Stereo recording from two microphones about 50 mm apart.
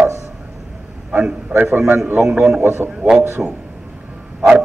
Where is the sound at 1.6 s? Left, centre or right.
Right.